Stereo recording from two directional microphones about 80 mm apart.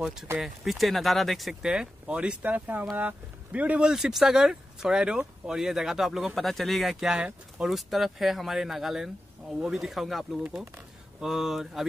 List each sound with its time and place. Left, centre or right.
0.0 s speech: centre
3.9 s speech: centre